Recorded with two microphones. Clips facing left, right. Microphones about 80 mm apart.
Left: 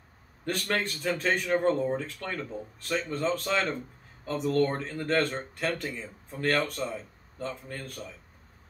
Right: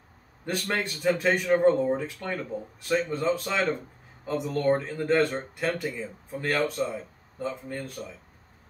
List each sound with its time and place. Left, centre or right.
0.5 s speech: centre